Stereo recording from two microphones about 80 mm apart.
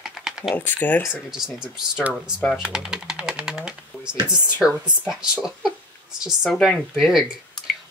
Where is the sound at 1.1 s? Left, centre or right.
Centre.